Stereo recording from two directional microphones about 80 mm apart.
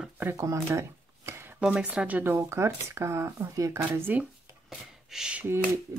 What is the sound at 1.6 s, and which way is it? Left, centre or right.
Speech, centre.